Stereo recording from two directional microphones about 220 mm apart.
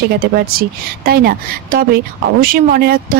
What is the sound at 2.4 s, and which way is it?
Speech, 40° right (ahead or behind).